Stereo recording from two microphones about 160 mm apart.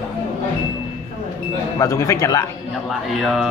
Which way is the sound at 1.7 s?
20° left (ahead or behind).